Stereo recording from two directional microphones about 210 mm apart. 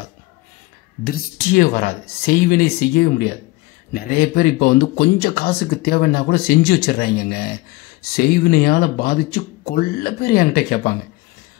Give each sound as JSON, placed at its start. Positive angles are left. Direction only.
{"t": 1.0, "sound": "speech", "side_deg": 45}